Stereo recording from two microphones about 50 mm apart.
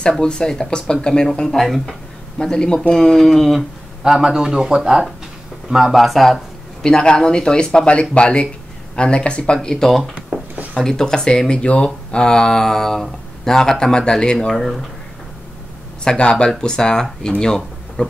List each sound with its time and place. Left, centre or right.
0.2 s speech: centre
2.4 s speech: centre
3.5 s speech: centre
6.8 s speech: centre
14.5 s speech: centre
16.0 s speech: centre